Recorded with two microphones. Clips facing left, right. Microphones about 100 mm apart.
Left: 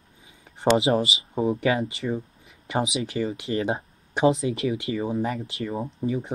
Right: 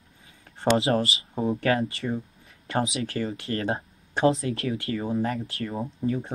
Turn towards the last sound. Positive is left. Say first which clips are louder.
# even
turn(degrees=10)  # may be behind; listen again after turning